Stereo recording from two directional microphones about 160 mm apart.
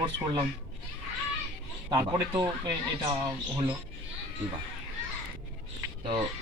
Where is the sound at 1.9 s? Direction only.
25° right (ahead or behind).